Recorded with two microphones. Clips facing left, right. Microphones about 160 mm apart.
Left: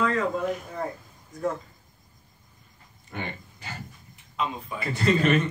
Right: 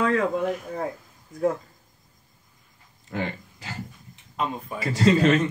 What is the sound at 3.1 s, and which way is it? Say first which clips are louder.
Speech: right 5 dB; 90° right.